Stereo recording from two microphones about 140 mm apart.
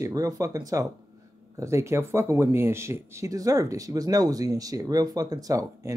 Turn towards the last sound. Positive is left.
turn(degrees=-25)  # may be behind; listen again after turning